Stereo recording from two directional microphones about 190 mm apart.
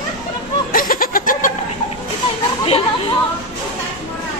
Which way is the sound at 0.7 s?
50° left (ahead or behind).